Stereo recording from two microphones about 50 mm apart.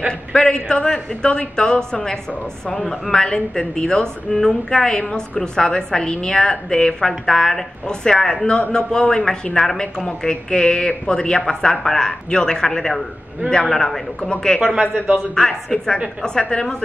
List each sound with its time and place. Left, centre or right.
0.3 s a man's voice: centre